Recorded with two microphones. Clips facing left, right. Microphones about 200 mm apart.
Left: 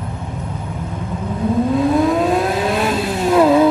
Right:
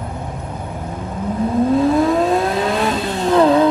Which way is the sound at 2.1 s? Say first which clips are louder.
Even; centre (ahead or behind).